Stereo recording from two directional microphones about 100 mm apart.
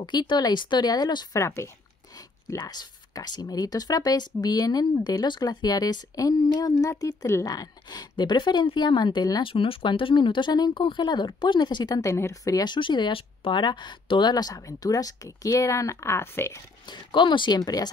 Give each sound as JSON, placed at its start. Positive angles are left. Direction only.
{"t": 0.0, "sound": "speech", "side_deg": 50}
{"t": 1.4, "sound": "speech", "side_deg": 30}
{"t": 2.5, "sound": "speech", "side_deg": 40}
{"t": 7.5, "sound": "speech", "side_deg": 40}
{"t": 9.4, "sound": "speech", "side_deg": 65}
{"t": 12.0, "sound": "speech", "side_deg": 30}
{"t": 12.6, "sound": "speech", "side_deg": 50}
{"t": 14.3, "sound": "speech", "side_deg": 35}
{"t": 16.9, "sound": "speech", "side_deg": 50}